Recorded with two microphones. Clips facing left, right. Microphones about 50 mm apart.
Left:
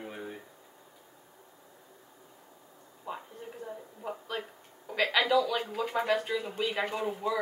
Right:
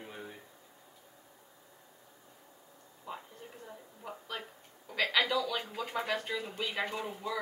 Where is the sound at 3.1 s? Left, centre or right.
Centre.